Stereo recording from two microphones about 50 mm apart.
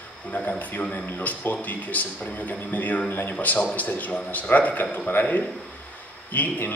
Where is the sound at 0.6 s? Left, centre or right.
Left.